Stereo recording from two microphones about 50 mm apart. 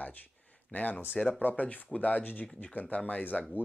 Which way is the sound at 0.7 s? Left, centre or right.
Left.